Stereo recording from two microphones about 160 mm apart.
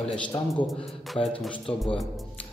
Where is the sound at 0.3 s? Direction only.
20° left (ahead or behind).